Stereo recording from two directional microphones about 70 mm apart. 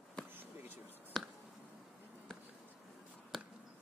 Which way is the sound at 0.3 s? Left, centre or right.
Right.